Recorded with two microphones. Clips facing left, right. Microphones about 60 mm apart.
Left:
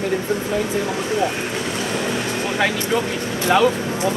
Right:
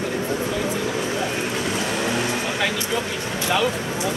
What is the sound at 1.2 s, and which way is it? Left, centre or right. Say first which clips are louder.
Vehicle: left 2 dB; centre.